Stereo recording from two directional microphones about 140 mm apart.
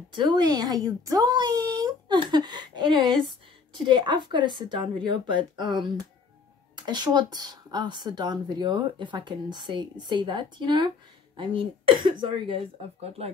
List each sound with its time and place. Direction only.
0.1 s a child's voice: 30° right (ahead or behind)
13.2 s speech: 45° right (ahead or behind)